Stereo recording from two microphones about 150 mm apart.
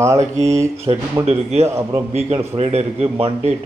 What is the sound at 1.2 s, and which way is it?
A man's voice, 45° right (ahead or behind).